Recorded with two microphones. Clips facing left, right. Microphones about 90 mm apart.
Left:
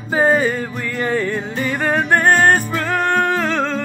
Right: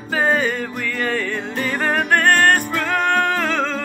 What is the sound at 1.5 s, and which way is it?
Music, 5° left (ahead or behind).